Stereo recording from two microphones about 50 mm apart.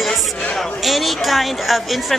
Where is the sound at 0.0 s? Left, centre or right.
Centre.